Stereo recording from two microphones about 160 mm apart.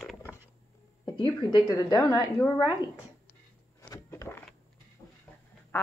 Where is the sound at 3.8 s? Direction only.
15° left (ahead or behind).